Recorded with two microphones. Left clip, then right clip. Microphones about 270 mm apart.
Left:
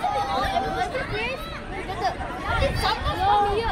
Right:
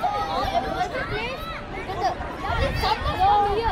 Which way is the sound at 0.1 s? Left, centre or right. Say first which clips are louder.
Even; right.